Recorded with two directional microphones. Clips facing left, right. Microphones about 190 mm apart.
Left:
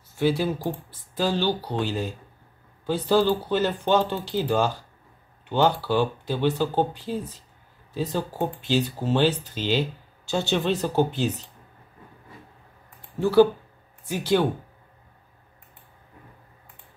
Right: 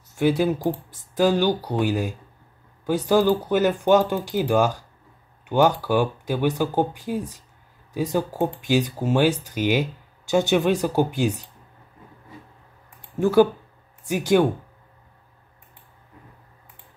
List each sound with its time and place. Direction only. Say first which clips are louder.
0.2 s speech: right 3 dB; 20° right (ahead or behind)
13.2 s speech: even; 15° right (ahead or behind)